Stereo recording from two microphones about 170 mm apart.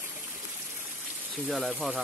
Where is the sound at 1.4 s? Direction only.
Centre (ahead or behind).